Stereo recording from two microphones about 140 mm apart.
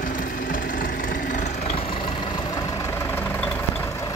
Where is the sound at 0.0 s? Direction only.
80° left; by 3.3 s 15° left (ahead or behind).